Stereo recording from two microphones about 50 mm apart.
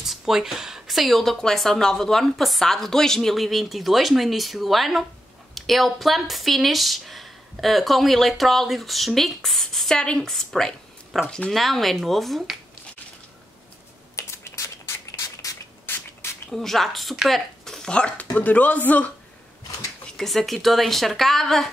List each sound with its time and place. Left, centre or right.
0.0 s speech: centre
11.2 s speech: centre
11.5 s speech: centre
14.1 s a sound: left
15.9 s rodents: left
16.4 s speech: centre
17.3 s a sound: centre
17.9 s speech: centre
18.4 s speech: left
20.2 s speech: centre